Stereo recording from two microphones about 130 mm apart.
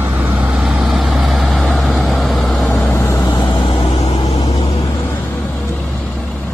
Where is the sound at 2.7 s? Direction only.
15° left (ahead or behind).